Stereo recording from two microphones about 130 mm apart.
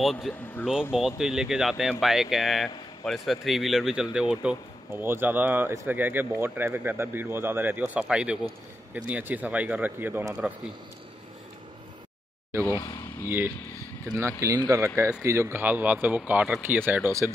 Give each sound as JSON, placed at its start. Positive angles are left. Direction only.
{"t": 0.0, "sound": "speech", "side_deg": 0}
{"t": 12.7, "sound": "speech", "side_deg": 30}
{"t": 14.4, "sound": "speech", "side_deg": -25}